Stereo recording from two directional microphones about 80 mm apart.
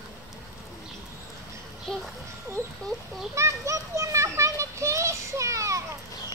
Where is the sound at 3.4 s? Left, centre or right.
Right.